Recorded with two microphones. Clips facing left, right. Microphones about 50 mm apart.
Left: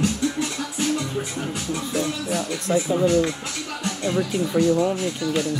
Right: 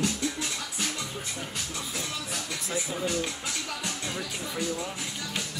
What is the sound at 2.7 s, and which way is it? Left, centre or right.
Speech, centre.